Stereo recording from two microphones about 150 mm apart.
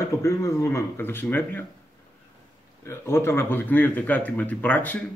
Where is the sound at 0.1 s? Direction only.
20° left (ahead or behind).